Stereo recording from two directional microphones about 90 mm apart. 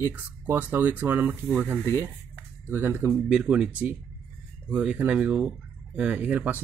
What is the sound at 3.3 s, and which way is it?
Speech, 10° right (ahead or behind).